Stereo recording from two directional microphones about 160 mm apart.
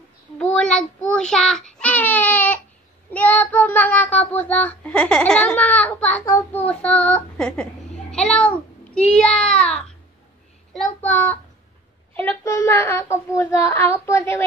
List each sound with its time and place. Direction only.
0.4 s child singing: 5° left (ahead or behind)
8.1 s a child's voice: 5° left (ahead or behind)
11.0 s a child's voice: 10° left (ahead or behind)
12.1 s child singing: 10° left (ahead or behind)